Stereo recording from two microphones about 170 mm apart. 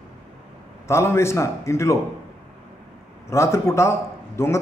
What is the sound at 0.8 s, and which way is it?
A man's voice, 15° left (ahead or behind).